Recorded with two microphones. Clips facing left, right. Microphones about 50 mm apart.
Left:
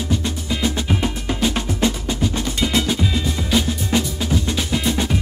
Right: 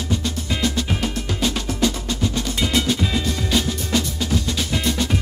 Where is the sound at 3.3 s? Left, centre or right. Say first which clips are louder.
Left 1 dB; centre.